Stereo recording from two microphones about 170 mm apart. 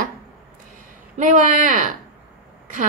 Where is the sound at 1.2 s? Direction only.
50° right (ahead or behind).